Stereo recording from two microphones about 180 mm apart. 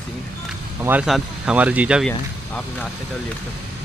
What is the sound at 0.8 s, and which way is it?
Speech, 10° right (ahead or behind).